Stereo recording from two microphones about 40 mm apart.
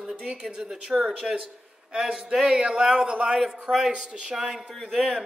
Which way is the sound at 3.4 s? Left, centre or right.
Centre.